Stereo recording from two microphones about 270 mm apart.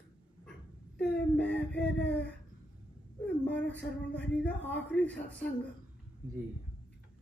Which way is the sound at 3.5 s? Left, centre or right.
Centre.